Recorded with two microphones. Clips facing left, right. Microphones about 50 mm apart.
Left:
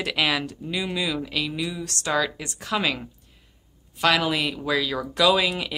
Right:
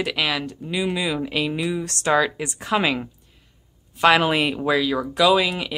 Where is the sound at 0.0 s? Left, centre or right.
Centre; by 4.7 s right.